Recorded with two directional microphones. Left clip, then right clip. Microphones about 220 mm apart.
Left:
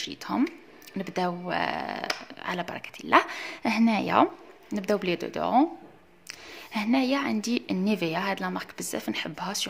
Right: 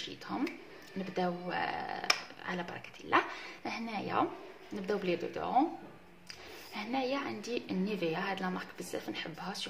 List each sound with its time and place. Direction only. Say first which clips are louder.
0.0 s a woman's voice: left 8 dB; 45° left (ahead or behind)